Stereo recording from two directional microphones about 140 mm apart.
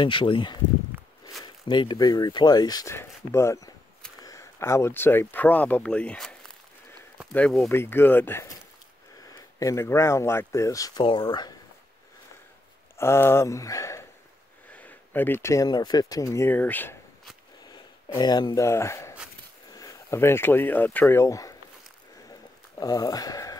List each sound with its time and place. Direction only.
0.0 s speech: 35° left (ahead or behind); by 7.6 s 5° left (ahead or behind)
7.6 s speech: 15° left (ahead or behind)
12.9 s speech: 20° left (ahead or behind)
14.7 s speech: 10° left (ahead or behind)
17.6 s speech: 30° left (ahead or behind)
22.8 s speech: 25° left (ahead or behind)